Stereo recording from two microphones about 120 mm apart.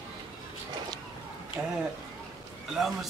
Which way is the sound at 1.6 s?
25° right (ahead or behind).